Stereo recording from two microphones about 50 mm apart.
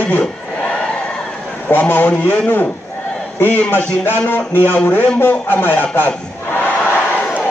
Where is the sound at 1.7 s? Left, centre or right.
Left.